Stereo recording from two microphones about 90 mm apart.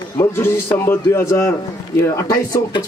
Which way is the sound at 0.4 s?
30° left (ahead or behind).